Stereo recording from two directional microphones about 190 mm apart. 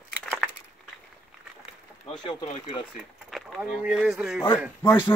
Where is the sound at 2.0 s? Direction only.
30° left (ahead or behind).